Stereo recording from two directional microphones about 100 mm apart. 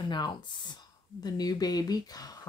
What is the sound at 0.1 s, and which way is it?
Speech, 50° left (ahead or behind).